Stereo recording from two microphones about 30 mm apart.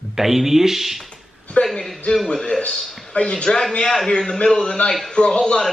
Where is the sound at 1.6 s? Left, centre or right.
Left.